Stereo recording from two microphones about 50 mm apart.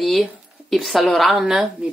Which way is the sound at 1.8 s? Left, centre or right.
Right.